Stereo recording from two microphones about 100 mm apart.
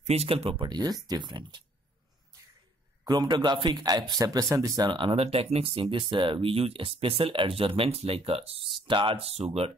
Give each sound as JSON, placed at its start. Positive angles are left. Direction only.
{"t": 0.1, "sound": "speech", "side_deg": -85}
{"t": 0.7, "sound": "speech", "side_deg": -45}
{"t": 3.1, "sound": "speech", "side_deg": -45}
{"t": 4.9, "sound": "speech", "side_deg": -70}
{"t": 8.8, "sound": "speech", "side_deg": -55}